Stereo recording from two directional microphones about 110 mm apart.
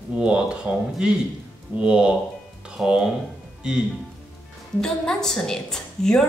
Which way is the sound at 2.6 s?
5° right (ahead or behind).